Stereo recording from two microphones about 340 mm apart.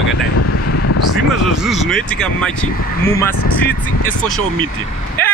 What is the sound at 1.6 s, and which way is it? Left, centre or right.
Speech, centre.